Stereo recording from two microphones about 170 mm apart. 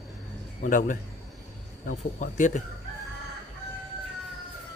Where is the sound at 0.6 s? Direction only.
50° left (ahead or behind).